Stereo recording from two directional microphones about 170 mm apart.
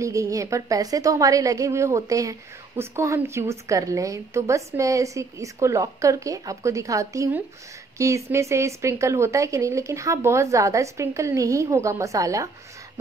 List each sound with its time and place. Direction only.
0.0 s a woman's voice: 20° right (ahead or behind)